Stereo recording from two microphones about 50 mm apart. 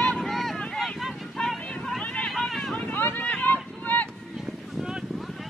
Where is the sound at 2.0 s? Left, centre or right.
Left.